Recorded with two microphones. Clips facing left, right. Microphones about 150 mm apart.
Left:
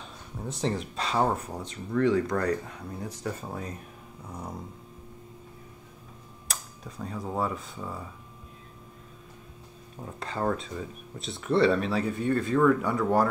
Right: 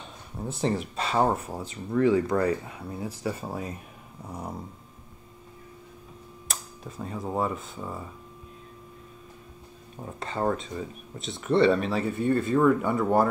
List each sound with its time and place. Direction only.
0.4 s speech: 5° right (ahead or behind)
6.4 s speech: centre (ahead or behind)
10.0 s speech: centre (ahead or behind)